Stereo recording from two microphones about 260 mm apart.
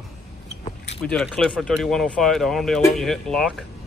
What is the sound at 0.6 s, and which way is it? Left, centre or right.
Keys jangling, left.